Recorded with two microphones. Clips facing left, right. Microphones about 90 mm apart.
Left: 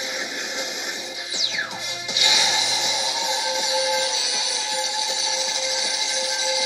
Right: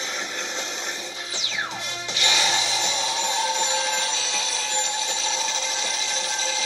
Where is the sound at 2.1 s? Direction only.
10° left (ahead or behind).